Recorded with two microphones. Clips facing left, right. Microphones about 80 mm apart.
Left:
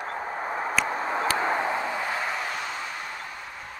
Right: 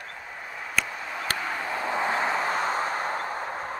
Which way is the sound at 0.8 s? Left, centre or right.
Left.